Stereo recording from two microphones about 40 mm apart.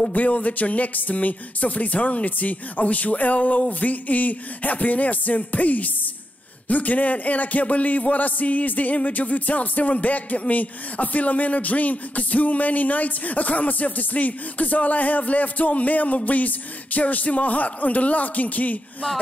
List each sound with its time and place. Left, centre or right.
0.1 s speech: left